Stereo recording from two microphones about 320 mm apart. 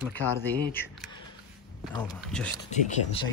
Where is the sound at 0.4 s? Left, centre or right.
Centre.